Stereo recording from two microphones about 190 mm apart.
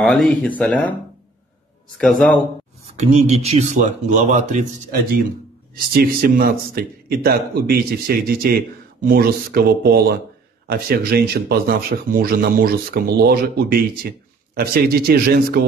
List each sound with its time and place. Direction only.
0.0 s speech: centre (ahead or behind)
2.0 s speech: 5° left (ahead or behind)
3.0 s speech: 35° right (ahead or behind)
5.9 s speech: 50° right (ahead or behind)